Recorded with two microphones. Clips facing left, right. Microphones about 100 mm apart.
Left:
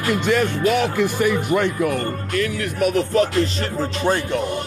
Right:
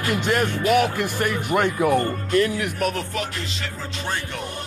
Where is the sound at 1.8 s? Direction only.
25° right (ahead or behind).